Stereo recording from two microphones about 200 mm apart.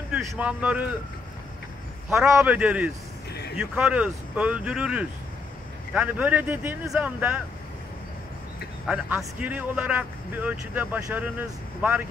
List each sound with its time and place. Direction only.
0.1 s speech: 5° right (ahead or behind)
2.3 s speech: 5° right (ahead or behind)
8.8 s speech: 5° right (ahead or behind)